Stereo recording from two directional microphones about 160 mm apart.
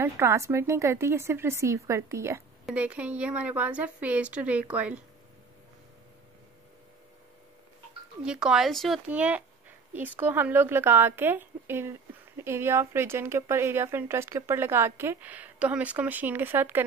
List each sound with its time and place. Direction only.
0.0 s speech: 15° right (ahead or behind)
8.2 s speech: 5° right (ahead or behind)